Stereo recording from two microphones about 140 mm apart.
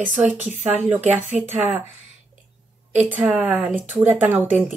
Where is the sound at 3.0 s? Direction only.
10° right (ahead or behind).